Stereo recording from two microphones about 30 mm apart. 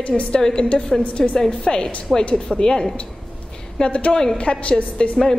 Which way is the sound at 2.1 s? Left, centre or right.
Centre.